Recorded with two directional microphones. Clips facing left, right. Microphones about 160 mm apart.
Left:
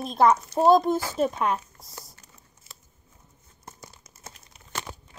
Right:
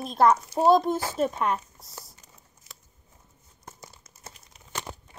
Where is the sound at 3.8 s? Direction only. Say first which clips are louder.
Left 1 dB; centre (ahead or behind).